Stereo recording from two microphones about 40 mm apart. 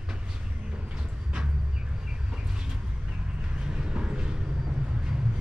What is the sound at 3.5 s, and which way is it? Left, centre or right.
Vehicle, right.